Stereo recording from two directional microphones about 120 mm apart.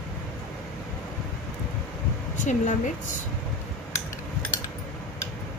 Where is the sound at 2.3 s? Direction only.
90° left.